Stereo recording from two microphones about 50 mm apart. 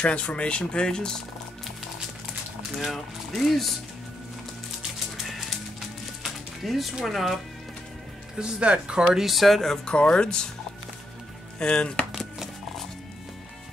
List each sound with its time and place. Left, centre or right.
0.0 s speech: left
2.8 s speech: centre
6.2 s music: centre
7.1 s speech: centre
8.4 s speech: centre
9.2 s speech: centre
9.9 s speech: centre
11.6 s speech: centre